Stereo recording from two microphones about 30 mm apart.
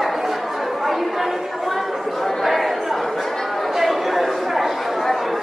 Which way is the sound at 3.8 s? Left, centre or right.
Centre.